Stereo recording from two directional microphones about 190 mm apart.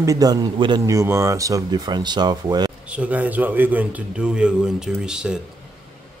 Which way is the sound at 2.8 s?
5° right (ahead or behind).